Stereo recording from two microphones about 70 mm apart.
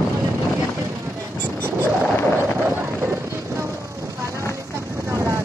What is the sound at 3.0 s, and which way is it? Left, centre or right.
Vehicle, right.